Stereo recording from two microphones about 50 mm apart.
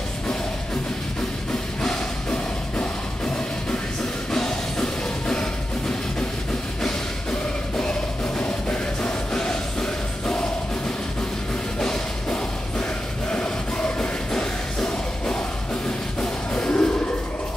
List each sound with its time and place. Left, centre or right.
1.8 s music: centre
4.3 s music: centre
11.8 s music: centre